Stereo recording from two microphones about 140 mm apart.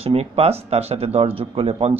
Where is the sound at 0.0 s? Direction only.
45° right (ahead or behind).